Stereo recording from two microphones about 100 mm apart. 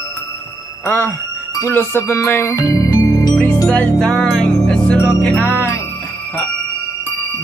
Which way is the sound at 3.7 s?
10° left (ahead or behind).